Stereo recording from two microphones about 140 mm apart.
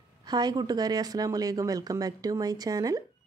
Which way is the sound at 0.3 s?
30° right (ahead or behind).